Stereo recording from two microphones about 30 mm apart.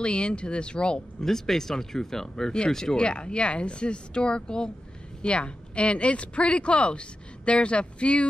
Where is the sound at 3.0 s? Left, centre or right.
Left.